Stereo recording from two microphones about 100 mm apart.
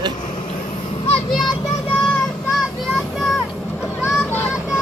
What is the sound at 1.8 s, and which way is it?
Child singing, 15° left (ahead or behind).